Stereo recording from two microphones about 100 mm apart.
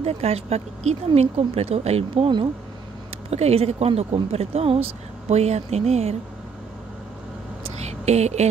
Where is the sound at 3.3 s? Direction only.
90° right.